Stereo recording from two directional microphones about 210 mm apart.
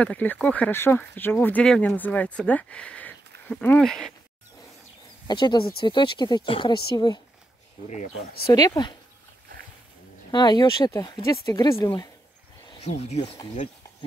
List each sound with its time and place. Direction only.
0.0 s speech: 5° left (ahead or behind)
5.3 s speech: 20° left (ahead or behind)
8.5 s speech: 20° left (ahead or behind)
10.3 s speech: 20° left (ahead or behind)
12.6 s a sound: 30° left (ahead or behind)